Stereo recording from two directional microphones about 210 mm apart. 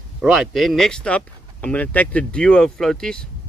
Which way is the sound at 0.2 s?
Centre (ahead or behind).